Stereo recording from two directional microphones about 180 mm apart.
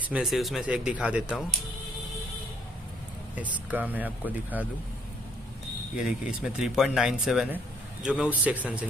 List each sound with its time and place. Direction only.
0.0 s speech: 5° right (ahead or behind)
3.3 s speech: 10° right (ahead or behind)
5.9 s speech: 5° right (ahead or behind)